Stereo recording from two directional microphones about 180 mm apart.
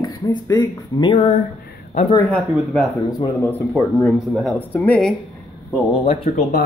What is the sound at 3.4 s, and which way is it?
Speech, 10° left (ahead or behind).